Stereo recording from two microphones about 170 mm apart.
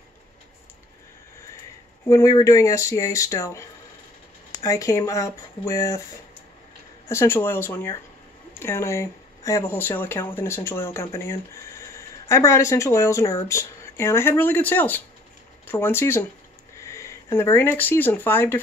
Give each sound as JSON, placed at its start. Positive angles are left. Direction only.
{"t": 2.0, "sound": "speech", "side_deg": 20}
{"t": 7.1, "sound": "speech", "side_deg": 15}